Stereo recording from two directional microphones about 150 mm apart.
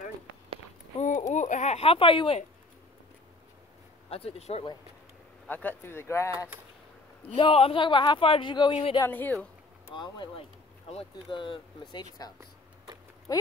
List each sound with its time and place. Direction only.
0.9 s a sound: 55° left (ahead or behind)
1.3 s speech: 55° left (ahead or behind); by 2.4 s 35° left (ahead or behind)
4.1 s speech: 40° left (ahead or behind)
5.5 s speech: 10° left (ahead or behind)
7.3 s speech: 40° left (ahead or behind)
9.0 s speech: 10° left (ahead or behind)
9.9 s speech: 30° left (ahead or behind)
13.3 s speech: 25° left (ahead or behind)